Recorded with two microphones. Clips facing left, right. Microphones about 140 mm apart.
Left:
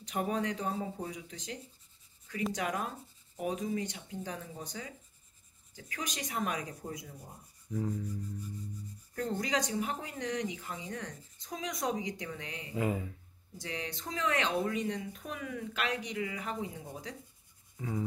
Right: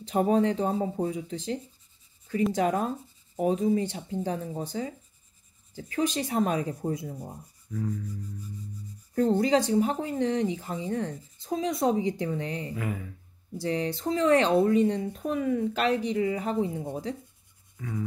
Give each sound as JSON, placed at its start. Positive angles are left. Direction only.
{"t": 0.0, "sound": "speech", "side_deg": -30}
{"t": 7.7, "sound": "speech", "side_deg": 20}
{"t": 9.1, "sound": "speech", "side_deg": -30}
{"t": 12.7, "sound": "speech", "side_deg": 25}
{"t": 13.6, "sound": "speech", "side_deg": -35}
{"t": 17.7, "sound": "a sound", "side_deg": 25}